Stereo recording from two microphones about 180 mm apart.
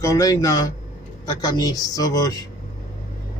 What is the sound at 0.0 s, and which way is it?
A man's voice, 20° left (ahead or behind).